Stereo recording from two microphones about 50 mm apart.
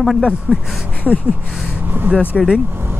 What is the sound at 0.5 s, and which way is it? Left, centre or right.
Speech, centre.